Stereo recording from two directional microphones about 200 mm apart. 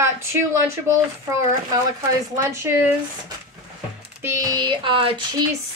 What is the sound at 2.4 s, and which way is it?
Speech, 15° right (ahead or behind).